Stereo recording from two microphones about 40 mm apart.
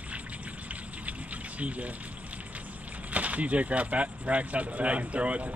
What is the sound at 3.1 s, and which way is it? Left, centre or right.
Speech, right.